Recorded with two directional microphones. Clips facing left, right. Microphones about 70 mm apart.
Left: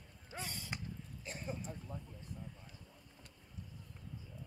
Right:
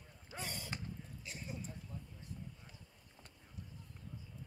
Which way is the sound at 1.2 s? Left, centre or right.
Left.